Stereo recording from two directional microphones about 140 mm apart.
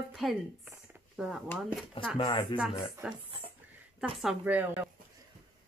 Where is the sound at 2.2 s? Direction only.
40° left (ahead or behind).